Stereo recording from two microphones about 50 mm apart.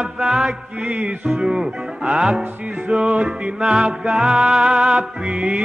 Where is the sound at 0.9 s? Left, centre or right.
Right.